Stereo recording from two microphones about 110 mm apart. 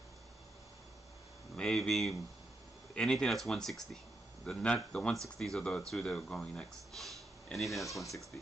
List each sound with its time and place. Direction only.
1.6 s speech: 5° left (ahead or behind)